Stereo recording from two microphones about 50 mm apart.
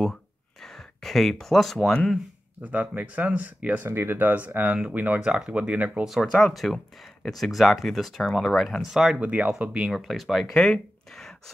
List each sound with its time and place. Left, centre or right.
0.0 s a sound: centre
2.6 s speech: right
3.8 s speech: right
6.0 s speech: centre
8.8 s speech: centre
9.2 s speech: right
9.8 s speech: centre
10.5 s speech: centre